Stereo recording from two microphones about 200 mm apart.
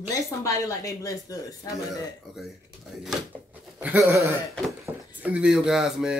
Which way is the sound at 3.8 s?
10° right (ahead or behind).